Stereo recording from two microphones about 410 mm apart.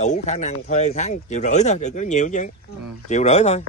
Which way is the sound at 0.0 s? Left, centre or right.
Centre.